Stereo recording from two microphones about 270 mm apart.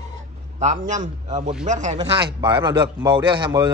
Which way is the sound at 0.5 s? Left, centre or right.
Right.